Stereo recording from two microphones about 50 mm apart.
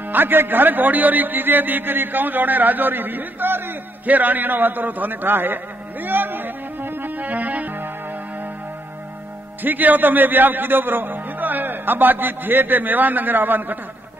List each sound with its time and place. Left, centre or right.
0.1 s a man's voice: right
4.0 s a sound: right
9.6 s a man's voice: right